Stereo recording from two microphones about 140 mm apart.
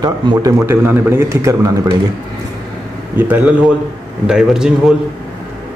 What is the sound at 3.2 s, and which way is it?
A man's voice, 10° right (ahead or behind).